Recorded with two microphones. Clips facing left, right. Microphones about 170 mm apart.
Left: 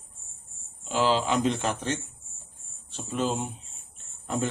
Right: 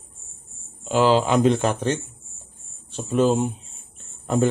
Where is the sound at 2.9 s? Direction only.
45° right (ahead or behind).